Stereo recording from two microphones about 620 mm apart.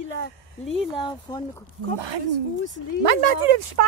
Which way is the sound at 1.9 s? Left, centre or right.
Right.